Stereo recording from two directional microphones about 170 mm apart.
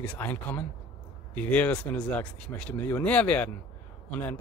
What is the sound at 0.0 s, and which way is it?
A man's voice, 10° left (ahead or behind).